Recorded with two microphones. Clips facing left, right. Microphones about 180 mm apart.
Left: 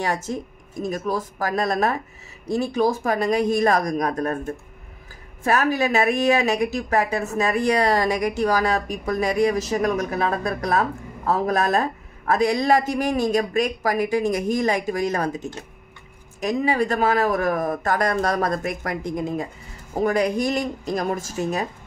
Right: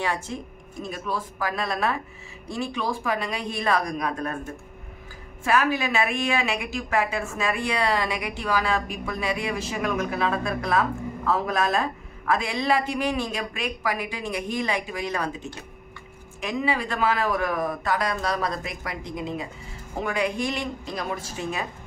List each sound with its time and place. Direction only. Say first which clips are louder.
0.0 s a woman's voice: left 3 dB; 40° left (ahead or behind)
5.4 s a woman's voice: left 3 dB; 40° left (ahead or behind)